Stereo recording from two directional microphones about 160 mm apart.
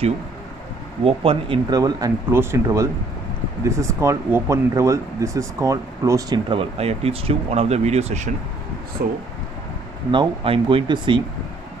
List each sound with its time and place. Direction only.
1.0 s speech: 35° right (ahead or behind)
9.0 s speech: 70° right (ahead or behind)
10.1 s speech: 35° right (ahead or behind)